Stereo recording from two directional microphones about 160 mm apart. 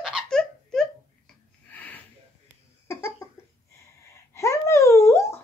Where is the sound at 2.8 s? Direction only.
15° left (ahead or behind).